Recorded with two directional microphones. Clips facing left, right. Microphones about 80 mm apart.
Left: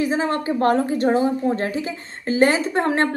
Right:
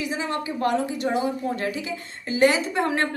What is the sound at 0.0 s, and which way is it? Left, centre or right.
A woman's voice, left.